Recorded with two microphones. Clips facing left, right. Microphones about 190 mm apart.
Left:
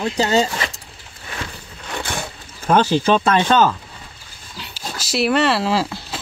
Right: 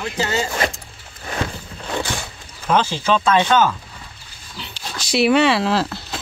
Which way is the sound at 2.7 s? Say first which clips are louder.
Left 3 dB; 50° left (ahead or behind).